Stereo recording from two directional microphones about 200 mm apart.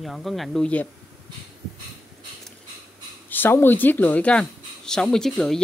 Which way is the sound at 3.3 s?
10° left (ahead or behind).